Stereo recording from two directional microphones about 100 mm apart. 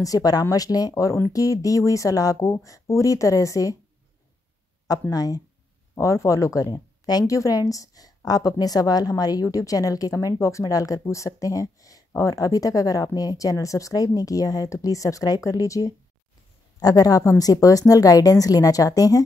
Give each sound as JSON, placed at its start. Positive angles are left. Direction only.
{"t": 0.0, "sound": "a woman's voice", "side_deg": 40}
{"t": 5.1, "sound": "a woman's voice", "side_deg": 40}